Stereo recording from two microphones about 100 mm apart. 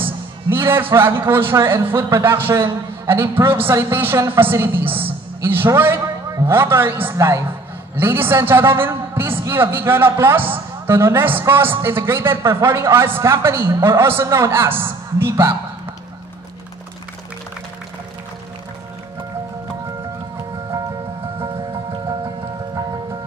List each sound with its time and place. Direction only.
0.5 s a man's voice: 20° right (ahead or behind)